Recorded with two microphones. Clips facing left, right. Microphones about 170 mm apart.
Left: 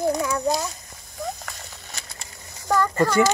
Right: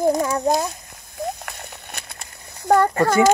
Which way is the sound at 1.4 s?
60° right (ahead or behind).